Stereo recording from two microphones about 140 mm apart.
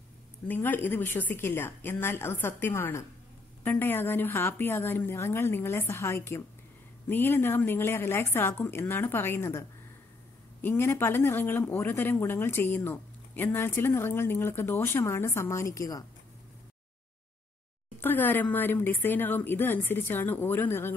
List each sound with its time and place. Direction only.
0.5 s speech: 15° left (ahead or behind)
17.9 s speech: 15° left (ahead or behind)